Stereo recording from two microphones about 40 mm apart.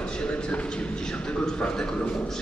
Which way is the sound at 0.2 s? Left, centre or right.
Left.